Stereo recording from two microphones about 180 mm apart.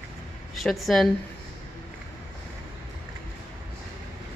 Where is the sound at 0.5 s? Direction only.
Centre (ahead or behind).